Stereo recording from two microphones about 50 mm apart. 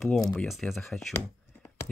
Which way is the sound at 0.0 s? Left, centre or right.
Centre.